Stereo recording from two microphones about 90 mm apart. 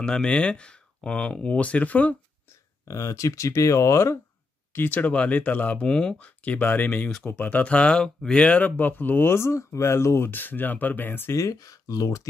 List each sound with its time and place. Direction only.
0.0 s speech: 10° left (ahead or behind)
2.9 s speech: 35° left (ahead or behind)
4.7 s speech: 20° left (ahead or behind); by 12.2 s 40° left (ahead or behind)